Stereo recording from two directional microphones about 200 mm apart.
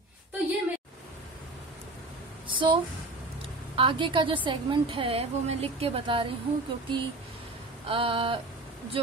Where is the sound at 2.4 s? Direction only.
25° right (ahead or behind).